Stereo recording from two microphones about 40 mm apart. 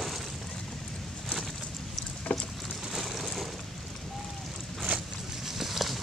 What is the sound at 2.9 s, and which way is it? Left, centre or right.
Vehicle, centre.